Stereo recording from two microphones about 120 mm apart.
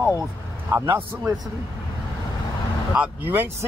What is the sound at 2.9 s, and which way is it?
Speech, 15° right (ahead or behind).